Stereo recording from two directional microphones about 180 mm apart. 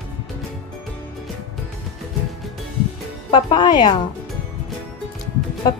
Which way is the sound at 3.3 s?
25° left (ahead or behind).